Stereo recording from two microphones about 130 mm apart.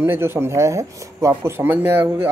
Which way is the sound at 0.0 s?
20° right (ahead or behind).